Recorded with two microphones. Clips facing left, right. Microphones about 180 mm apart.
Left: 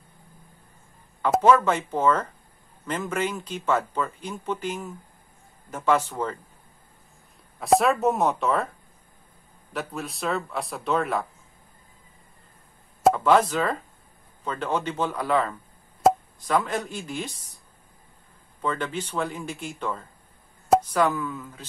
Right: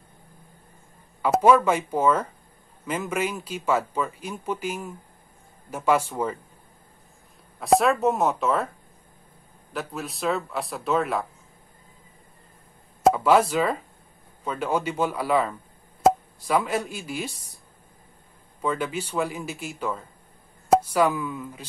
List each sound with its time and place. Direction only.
1.2 s speech: 10° right (ahead or behind)
7.6 s speech: centre (ahead or behind)
9.7 s speech: centre (ahead or behind)
13.0 s speech: 5° right (ahead or behind)
18.6 s speech: 10° right (ahead or behind)